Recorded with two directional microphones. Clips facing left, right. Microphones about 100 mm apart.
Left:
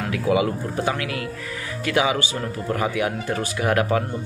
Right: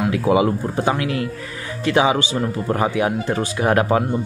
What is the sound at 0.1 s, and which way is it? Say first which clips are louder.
Speech: right 1 dB; 25° right (ahead or behind).